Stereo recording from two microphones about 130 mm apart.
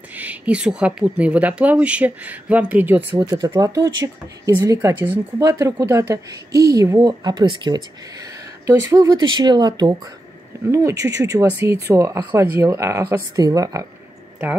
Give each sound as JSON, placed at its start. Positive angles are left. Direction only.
{"t": 0.1, "sound": "speech", "side_deg": -10}
{"t": 3.2, "sound": "a woman's voice", "side_deg": -30}